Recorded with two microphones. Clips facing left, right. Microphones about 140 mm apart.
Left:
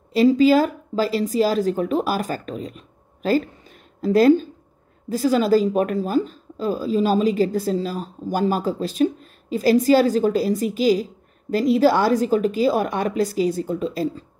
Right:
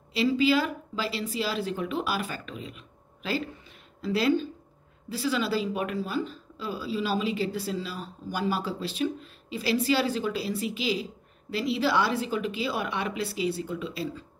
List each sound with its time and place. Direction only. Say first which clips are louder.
0.1 s speech: left 9 dB; 45° left (ahead or behind)